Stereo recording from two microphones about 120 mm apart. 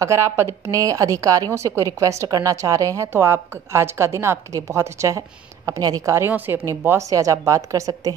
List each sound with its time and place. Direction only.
0.0 s a woman's voice: 25° right (ahead or behind)
6.1 s a woman's voice: 20° right (ahead or behind)